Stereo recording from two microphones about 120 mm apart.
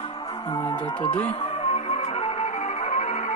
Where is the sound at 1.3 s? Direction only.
55° left (ahead or behind); by 3.3 s 85° left.